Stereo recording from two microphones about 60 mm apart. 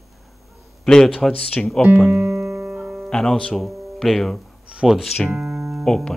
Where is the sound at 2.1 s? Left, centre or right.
Centre.